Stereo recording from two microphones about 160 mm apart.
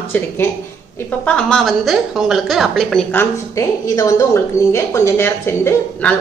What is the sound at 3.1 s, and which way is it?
A woman's voice, 20° left (ahead or behind).